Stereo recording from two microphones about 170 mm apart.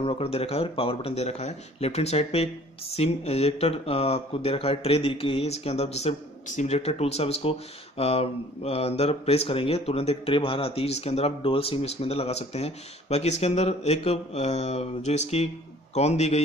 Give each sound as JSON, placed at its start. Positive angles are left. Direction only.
{"t": 0.0, "sound": "speech", "side_deg": 35}